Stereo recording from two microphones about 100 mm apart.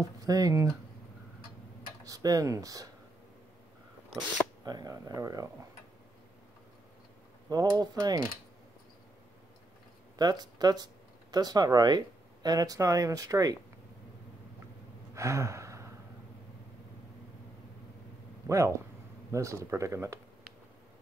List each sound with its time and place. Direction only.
0.0 s speech: 35° right (ahead or behind)
2.0 s speech: 35° right (ahead or behind)
4.6 s speech: 40° right (ahead or behind)
7.4 s speech: 40° right (ahead or behind)
10.1 s speech: 45° right (ahead or behind)
15.1 s gasp: 30° right (ahead or behind)
19.3 s speech: 30° right (ahead or behind)